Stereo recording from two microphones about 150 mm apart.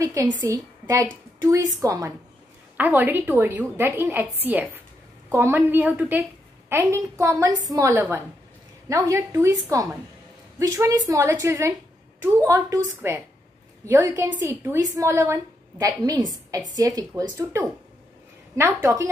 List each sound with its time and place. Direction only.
0.0 s a woman's voice: 25° right (ahead or behind)
2.8 s a woman's voice: 15° right (ahead or behind)
10.6 s a woman's voice: 20° right (ahead or behind)